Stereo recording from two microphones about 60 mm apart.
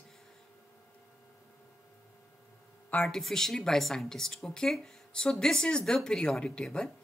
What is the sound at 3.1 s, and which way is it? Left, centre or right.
Speech, centre.